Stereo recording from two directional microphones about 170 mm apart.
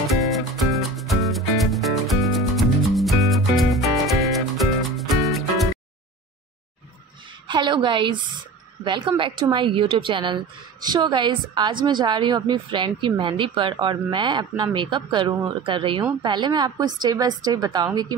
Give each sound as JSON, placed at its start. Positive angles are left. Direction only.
{"t": 0.1, "sound": "music", "side_deg": 0}
{"t": 7.4, "sound": "speech", "side_deg": -30}